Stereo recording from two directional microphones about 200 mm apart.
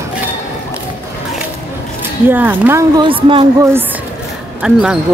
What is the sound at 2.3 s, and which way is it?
Speech, 10° right (ahead or behind).